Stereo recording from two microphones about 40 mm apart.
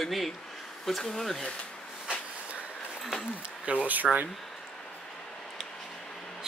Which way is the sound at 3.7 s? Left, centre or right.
Right.